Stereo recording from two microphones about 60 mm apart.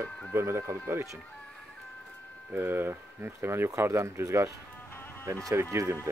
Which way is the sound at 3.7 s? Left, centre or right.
Right.